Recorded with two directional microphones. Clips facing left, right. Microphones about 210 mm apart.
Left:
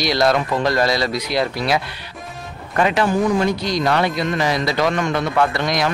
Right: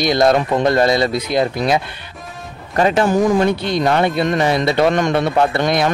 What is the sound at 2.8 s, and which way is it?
Speech, 40° right (ahead or behind).